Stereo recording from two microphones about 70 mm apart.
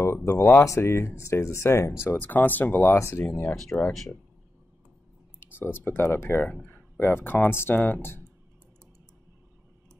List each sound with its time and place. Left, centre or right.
0.0 s speech: left
2.1 s speech: left
3.0 s speech: left
3.7 s speech: left
5.4 s speech: left
6.4 s speech: left